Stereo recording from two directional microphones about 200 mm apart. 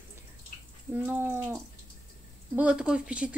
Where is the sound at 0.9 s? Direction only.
10° right (ahead or behind).